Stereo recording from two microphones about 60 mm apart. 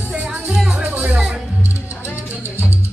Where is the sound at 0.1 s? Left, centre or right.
Right.